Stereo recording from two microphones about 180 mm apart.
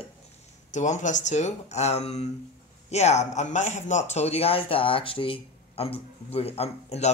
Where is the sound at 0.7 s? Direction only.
40° left (ahead or behind).